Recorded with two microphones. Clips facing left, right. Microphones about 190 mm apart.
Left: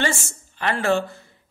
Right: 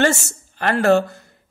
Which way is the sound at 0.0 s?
45° right (ahead or behind).